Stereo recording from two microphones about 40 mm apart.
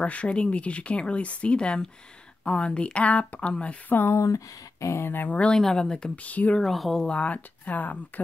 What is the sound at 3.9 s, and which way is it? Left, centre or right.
Speech, left.